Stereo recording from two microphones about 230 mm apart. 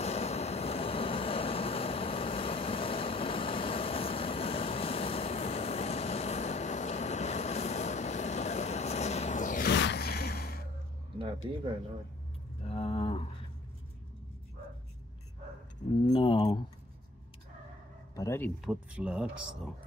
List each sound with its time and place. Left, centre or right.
0.0 s vehicle: left
9.8 s a sound: left
12.6 s a sound: left
16.1 s keys jangling: left
18.1 s music: centre
18.6 s speech: centre